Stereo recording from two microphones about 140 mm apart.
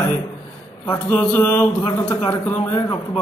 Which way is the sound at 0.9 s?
10° left (ahead or behind).